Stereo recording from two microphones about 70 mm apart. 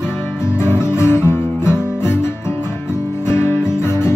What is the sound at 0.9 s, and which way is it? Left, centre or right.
Guitar, left.